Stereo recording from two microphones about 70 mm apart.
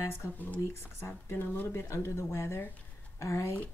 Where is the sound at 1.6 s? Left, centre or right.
Left.